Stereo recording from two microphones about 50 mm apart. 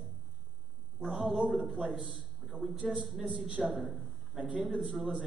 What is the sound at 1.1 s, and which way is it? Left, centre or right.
Speech, centre.